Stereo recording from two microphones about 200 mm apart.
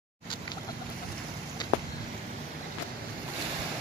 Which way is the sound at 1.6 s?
20° left (ahead or behind).